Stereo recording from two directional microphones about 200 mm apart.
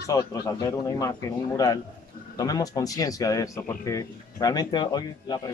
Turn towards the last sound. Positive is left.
turn(degrees=20)  # may be behind; listen again after turning